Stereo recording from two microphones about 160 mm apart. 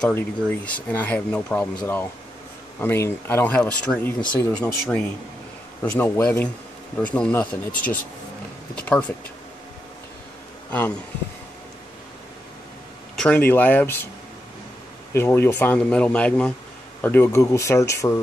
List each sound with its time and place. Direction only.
0.0 s speech: 10° left (ahead or behind)
10.7 s speech: 10° left (ahead or behind)
13.1 s a sound: 5° left (ahead or behind)
13.5 s speech: 10° left (ahead or behind)
15.1 s speech: 15° left (ahead or behind)